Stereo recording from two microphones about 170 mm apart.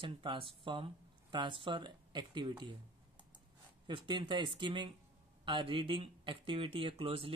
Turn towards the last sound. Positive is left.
turn(degrees=-35)  # may be behind; listen again after turning